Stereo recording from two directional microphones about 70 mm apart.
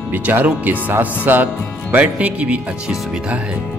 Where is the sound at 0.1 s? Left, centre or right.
Right.